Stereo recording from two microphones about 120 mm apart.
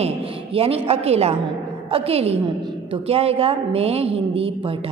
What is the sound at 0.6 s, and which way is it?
A woman's voice, 55° right (ahead or behind).